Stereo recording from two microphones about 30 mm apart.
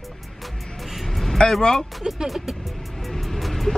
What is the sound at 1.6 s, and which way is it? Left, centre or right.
Speech, centre.